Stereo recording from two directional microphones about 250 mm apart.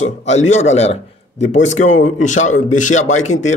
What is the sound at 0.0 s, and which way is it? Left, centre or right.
Speech, left.